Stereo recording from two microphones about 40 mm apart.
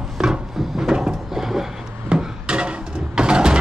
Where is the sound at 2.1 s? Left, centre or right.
Centre.